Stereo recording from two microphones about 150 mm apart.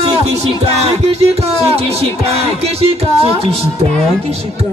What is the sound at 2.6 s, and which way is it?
Speech, 40° right (ahead or behind).